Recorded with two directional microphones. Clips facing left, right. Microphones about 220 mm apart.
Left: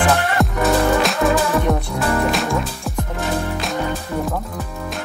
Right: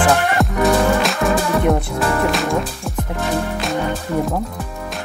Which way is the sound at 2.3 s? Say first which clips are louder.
Right 1 dB; centre (ahead or behind).